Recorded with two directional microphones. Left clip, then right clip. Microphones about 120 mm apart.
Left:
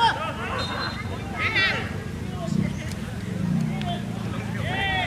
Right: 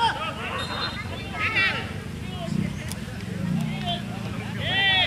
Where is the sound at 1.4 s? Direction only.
5° left (ahead or behind).